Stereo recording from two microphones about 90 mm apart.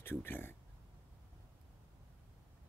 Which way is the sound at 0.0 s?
25° left (ahead or behind).